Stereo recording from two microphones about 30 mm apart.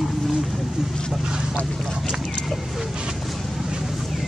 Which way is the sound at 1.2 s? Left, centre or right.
Right.